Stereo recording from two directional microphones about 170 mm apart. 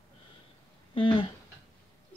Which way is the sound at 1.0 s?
30° left (ahead or behind).